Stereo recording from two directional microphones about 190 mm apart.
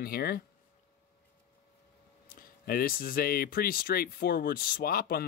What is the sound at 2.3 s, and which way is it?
Speech, 50° left (ahead or behind).